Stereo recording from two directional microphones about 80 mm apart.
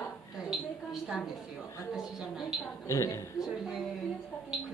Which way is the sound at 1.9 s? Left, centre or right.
Centre.